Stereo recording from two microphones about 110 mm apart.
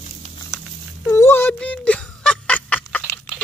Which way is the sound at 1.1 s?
20° left (ahead or behind).